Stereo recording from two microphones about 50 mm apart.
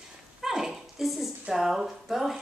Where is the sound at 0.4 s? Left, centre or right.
Centre.